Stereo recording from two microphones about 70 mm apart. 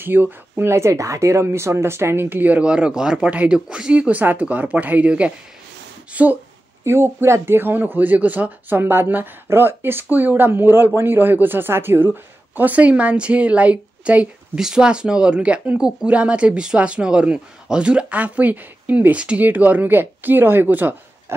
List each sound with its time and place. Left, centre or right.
0.0 s speech: right
6.8 s speech: right